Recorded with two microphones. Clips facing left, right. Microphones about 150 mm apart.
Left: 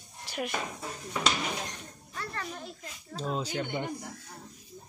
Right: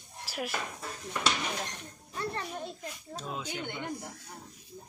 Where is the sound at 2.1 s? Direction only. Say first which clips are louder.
Right 3 dB; 20° right (ahead or behind).